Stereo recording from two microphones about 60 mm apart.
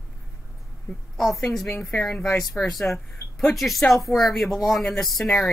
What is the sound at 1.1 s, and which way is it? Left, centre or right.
Speech, centre.